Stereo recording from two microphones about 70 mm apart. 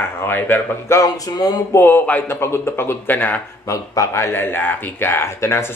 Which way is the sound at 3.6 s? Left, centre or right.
Left.